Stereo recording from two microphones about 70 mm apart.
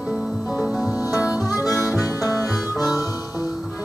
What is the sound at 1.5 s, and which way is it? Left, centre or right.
Harmonica, left.